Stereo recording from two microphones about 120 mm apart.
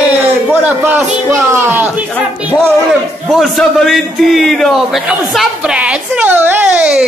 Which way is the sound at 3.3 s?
Centre (ahead or behind).